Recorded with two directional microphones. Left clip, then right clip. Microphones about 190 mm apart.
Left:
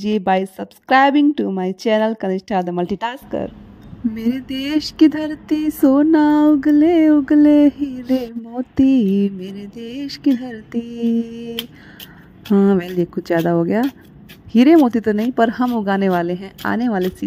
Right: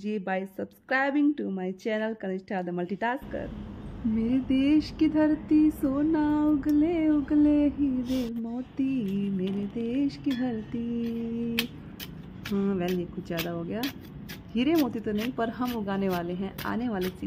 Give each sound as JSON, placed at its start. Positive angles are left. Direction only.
{"t": 0.0, "sound": "speech", "side_deg": 40}
{"t": 12.5, "sound": "speech", "side_deg": 40}